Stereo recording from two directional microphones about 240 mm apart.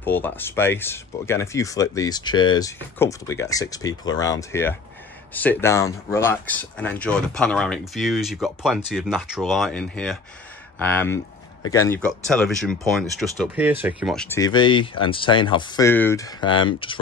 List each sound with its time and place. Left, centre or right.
0.0 s speech: centre